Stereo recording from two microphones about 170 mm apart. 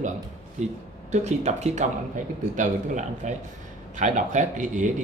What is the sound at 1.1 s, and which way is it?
Speech, 40° right (ahead or behind).